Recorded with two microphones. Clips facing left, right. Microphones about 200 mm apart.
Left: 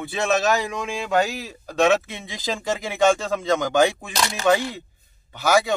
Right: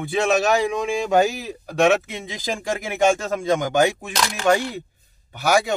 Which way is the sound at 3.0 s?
10° right (ahead or behind).